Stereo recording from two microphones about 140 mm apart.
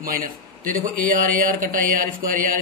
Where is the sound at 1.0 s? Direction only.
75° right (ahead or behind).